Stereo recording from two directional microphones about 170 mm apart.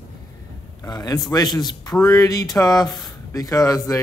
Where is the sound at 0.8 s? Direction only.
20° left (ahead or behind).